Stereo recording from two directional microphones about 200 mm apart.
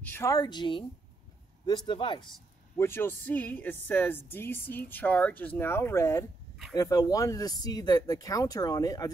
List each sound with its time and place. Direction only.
0.0 s a woman's voice: 10° left (ahead or behind)
2.8 s speech: 10° left (ahead or behind)